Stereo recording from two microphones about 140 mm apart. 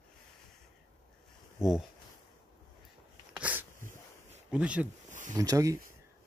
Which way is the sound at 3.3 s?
10° right (ahead or behind).